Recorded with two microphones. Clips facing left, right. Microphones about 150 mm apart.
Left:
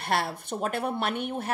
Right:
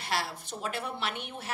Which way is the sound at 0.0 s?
55° left (ahead or behind).